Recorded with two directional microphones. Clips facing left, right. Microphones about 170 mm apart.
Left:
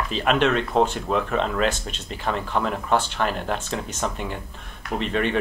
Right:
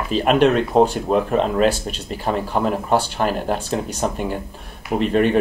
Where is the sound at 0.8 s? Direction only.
40° right (ahead or behind).